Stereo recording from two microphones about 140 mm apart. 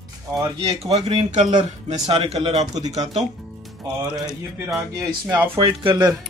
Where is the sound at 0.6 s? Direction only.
45° right (ahead or behind).